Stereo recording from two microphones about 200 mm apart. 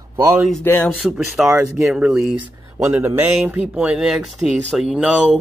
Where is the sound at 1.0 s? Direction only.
Centre (ahead or behind).